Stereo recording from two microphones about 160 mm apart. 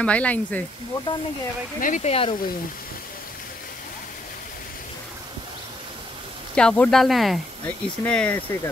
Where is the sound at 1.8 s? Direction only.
50° left (ahead or behind).